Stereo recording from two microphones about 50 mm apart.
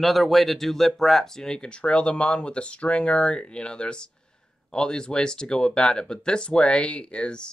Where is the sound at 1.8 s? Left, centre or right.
Left.